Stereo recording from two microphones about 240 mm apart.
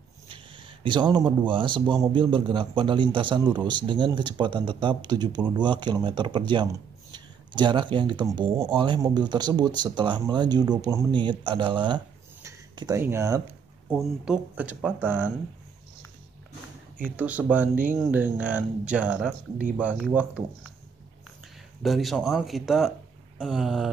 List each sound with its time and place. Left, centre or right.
0.3 s speech: right
12.4 s a sound: centre
13.8 s speech: centre
17.2 s speech: centre
21.8 s speech: centre